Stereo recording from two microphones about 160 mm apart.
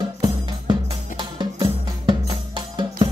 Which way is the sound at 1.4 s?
30° right (ahead or behind).